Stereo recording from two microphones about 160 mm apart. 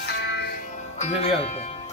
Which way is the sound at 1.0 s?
40° left (ahead or behind).